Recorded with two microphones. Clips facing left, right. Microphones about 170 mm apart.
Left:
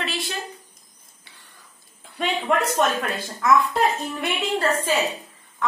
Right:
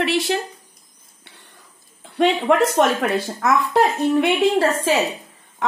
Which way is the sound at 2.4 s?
70° right (ahead or behind).